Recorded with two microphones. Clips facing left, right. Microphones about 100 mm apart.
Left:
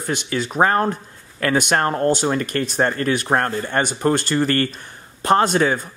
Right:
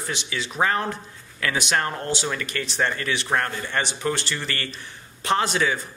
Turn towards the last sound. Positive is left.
turn(degrees=45)  # may be behind; listen again after turning